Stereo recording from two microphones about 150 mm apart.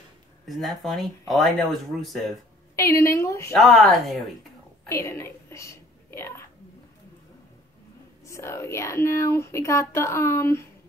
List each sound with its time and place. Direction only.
0.5 s speech: centre (ahead or behind)
2.7 s speech: 20° left (ahead or behind)
3.5 s speech: centre (ahead or behind)
4.8 s a woman's voice: 20° left (ahead or behind)
8.3 s speech: 20° left (ahead or behind)